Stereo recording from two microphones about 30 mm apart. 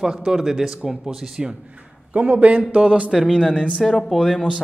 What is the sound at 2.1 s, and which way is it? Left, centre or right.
Speech, right.